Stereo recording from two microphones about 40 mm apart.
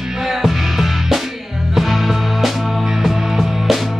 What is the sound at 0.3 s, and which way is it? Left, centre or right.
Music, centre.